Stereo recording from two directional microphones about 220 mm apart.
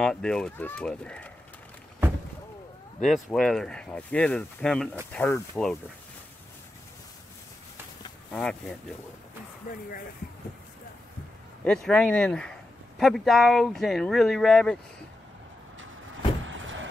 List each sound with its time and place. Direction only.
0.0 s speech: 5° left (ahead or behind)
3.0 s speech: centre (ahead or behind)
8.3 s speech: 5° left (ahead or behind)
9.7 s speech: 40° left (ahead or behind)
11.6 s speech: 5° left (ahead or behind)
16.4 s vehicle: 60° right (ahead or behind)